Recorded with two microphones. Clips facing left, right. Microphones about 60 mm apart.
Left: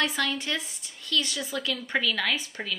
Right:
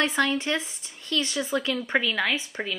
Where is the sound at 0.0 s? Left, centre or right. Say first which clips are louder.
Right 4 dB; right.